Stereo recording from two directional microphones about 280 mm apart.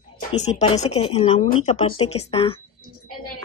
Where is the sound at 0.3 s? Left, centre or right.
Left.